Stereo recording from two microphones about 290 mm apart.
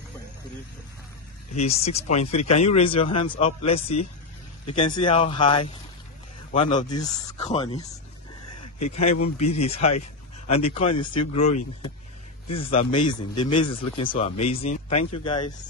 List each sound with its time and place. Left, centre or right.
1.5 s speech: left